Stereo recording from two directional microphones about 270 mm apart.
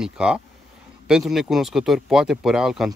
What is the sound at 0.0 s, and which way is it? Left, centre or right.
Speech, centre.